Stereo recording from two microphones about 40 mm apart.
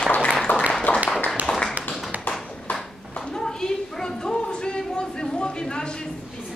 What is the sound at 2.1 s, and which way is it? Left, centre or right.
Tap, right.